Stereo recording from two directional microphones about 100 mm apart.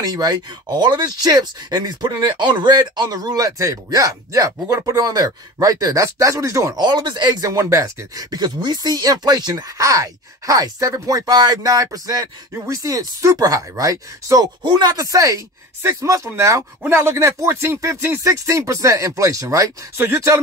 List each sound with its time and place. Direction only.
0.0 s speech: 40° right (ahead or behind)
6.8 s speech: 50° right (ahead or behind)
14.6 s speech: 50° right (ahead or behind); by 20.3 s 25° right (ahead or behind)